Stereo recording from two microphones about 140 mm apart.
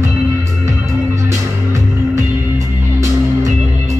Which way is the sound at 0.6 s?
20° right (ahead or behind).